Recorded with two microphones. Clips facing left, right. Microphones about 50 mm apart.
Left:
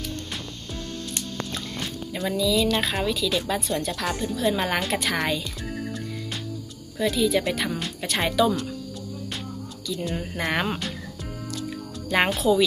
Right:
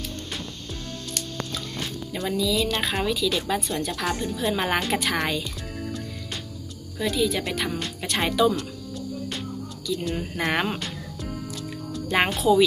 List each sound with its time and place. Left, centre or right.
1.8 s speech: centre
7.0 s speech: centre
9.8 s speech: centre
12.1 s speech: centre